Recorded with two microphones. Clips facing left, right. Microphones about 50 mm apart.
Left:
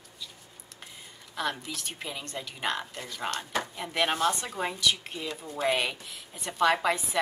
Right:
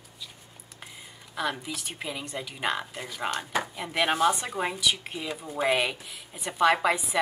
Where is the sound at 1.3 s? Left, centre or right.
Centre.